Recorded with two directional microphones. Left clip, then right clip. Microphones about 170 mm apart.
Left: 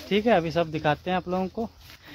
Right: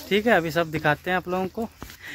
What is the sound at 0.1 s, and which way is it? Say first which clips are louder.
Speech: right 2 dB; centre (ahead or behind).